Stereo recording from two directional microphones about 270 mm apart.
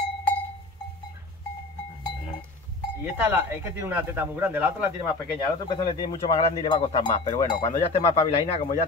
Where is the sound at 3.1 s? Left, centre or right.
Centre.